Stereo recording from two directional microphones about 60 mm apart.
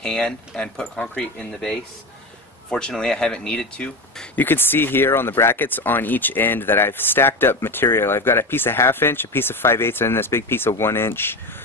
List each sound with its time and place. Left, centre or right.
0.0 s speech: centre
2.7 s speech: centre
4.4 s speech: left